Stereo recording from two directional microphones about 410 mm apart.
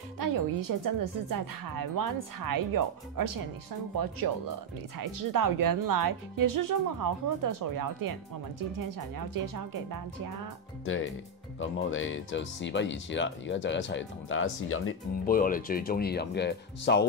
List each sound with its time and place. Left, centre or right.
0.2 s speech: right
11.6 s speech: left